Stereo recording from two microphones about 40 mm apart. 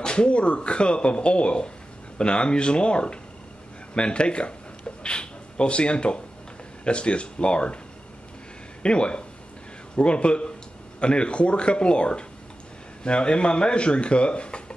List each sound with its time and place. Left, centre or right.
0.0 s speech: left
5.0 s a sound: left
6.8 s speech: left
8.8 s speech: left